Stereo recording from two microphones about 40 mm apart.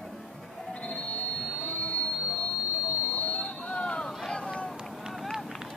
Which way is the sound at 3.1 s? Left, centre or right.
Left.